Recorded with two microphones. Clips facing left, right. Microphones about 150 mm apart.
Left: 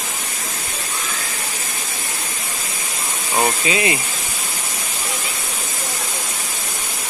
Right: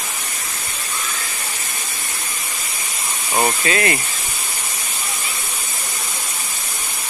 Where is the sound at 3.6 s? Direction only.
20° left (ahead or behind).